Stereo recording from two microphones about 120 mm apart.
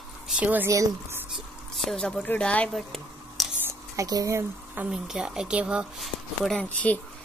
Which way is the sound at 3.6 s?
30° right (ahead or behind).